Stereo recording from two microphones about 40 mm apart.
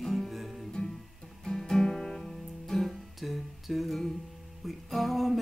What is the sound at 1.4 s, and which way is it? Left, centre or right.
Music, centre.